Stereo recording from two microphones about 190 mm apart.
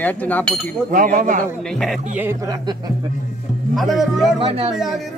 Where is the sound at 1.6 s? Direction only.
Centre (ahead or behind).